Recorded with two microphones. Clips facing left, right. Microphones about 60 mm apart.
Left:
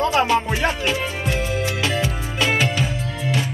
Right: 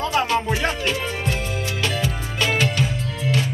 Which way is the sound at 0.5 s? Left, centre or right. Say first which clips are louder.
Left 1 dB; left.